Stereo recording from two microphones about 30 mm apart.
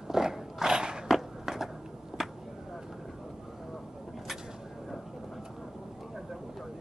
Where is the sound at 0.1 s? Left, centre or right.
Centre.